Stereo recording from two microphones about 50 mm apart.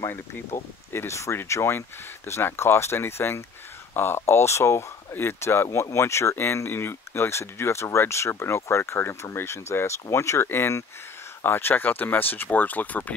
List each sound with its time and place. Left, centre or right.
0.9 s speech: left
1.5 s speech: left
5.1 s speech: left
11.4 s speech: left